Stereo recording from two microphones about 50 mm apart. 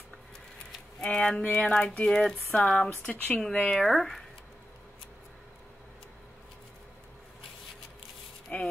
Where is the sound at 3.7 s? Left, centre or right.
Centre.